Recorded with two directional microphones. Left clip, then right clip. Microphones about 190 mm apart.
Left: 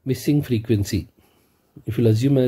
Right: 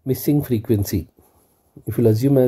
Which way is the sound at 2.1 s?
5° left (ahead or behind).